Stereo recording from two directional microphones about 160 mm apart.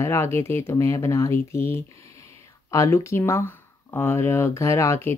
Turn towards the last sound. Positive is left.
turn(degrees=15)  # may be behind; listen again after turning